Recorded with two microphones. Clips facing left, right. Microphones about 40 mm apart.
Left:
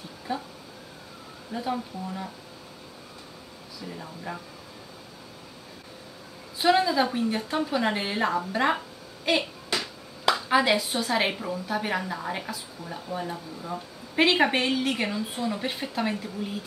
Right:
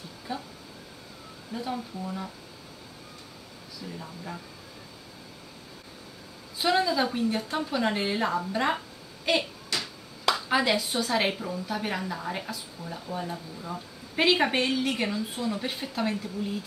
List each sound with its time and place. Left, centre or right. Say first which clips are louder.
0.3 s speech: left 4 dB; centre
1.5 s speech: left 3 dB; centre
3.9 s speech: left 3 dB; centre
6.6 s speech: left 3 dB; centre